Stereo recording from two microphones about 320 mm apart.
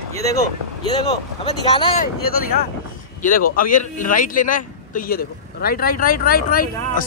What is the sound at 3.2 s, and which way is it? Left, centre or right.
A man's voice, left.